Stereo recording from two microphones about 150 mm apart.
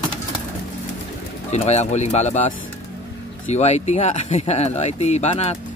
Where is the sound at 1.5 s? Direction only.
45° left (ahead or behind).